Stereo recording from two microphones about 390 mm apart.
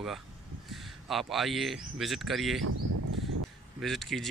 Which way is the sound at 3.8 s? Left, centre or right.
Centre.